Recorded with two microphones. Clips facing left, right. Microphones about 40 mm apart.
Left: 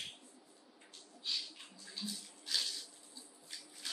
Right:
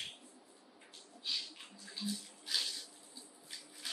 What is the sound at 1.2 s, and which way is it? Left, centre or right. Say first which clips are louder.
Bathtub: even; centre.